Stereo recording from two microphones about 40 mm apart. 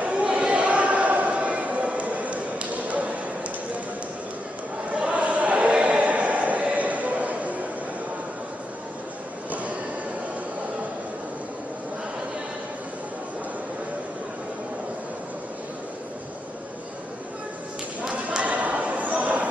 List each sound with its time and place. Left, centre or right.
0.0 s basketball bounce: right
4.9 s a sound: right
18.4 s basketball bounce: right